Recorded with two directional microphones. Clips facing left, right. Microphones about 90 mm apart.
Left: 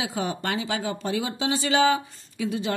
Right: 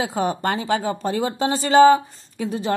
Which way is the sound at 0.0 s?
40° right (ahead or behind).